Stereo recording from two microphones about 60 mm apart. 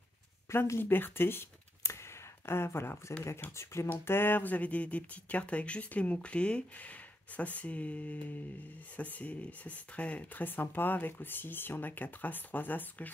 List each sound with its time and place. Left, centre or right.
0.5 s speech: left
3.9 s speech: left